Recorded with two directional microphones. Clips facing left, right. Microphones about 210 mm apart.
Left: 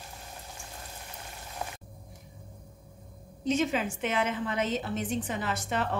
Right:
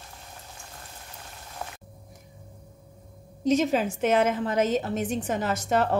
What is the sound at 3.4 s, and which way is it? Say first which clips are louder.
A woman's voice: right 5 dB; 40° right (ahead or behind).